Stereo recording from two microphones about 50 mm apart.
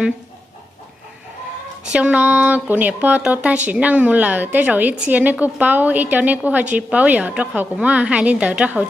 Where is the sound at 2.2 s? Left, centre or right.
Right.